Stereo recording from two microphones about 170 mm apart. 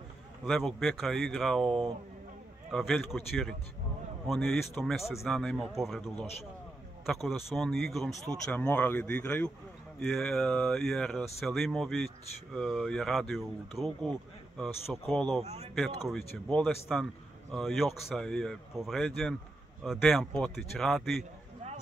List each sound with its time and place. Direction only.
0.5 s a man's voice: centre (ahead or behind)
15.4 s speech: 40° right (ahead or behind)
15.7 s a man's voice: centre (ahead or behind)